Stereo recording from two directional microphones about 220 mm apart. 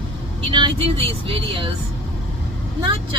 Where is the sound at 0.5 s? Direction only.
25° right (ahead or behind).